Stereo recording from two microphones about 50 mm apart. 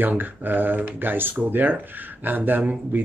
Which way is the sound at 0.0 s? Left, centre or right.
Right.